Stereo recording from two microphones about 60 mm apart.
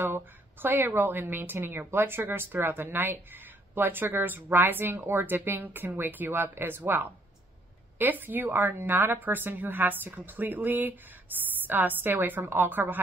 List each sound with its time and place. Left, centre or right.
0.0 s a woman's voice: right
4.9 s speech: right
5.2 s a woman's voice: right